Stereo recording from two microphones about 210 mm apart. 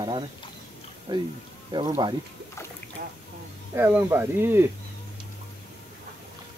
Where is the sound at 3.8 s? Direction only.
10° right (ahead or behind).